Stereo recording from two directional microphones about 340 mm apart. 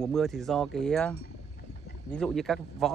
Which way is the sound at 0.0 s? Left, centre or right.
Centre.